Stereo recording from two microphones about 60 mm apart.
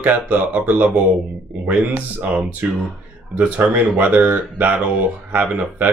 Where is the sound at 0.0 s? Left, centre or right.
Right.